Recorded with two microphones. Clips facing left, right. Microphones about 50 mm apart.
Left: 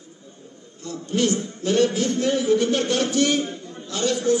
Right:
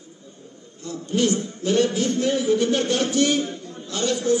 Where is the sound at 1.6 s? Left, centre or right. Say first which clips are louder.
Left 1 dB; right.